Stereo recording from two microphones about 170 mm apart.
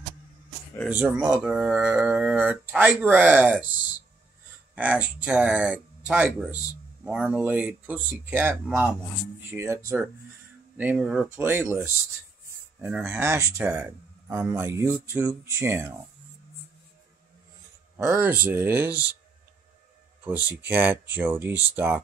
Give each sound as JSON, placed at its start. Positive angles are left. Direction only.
{"t": 0.8, "sound": "speech", "side_deg": -5}
{"t": 4.7, "sound": "speech", "side_deg": -10}
{"t": 11.2, "sound": "speech", "side_deg": -15}
{"t": 13.0, "sound": "speech", "side_deg": -15}
{"t": 17.9, "sound": "speech", "side_deg": -15}
{"t": 20.6, "sound": "speech", "side_deg": -10}